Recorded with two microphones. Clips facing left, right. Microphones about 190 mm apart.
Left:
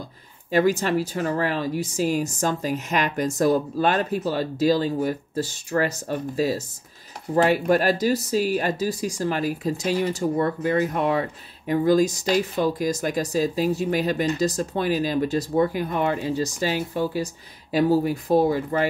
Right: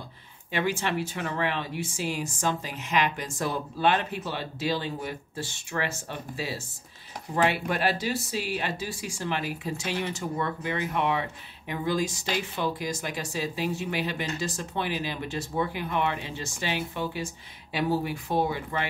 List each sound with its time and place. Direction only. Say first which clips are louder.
0.5 s speech: left 8 dB; 40° left (ahead or behind)